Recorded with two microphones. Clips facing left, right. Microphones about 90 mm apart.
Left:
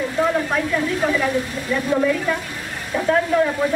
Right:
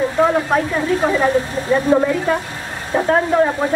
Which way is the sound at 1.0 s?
35° right (ahead or behind).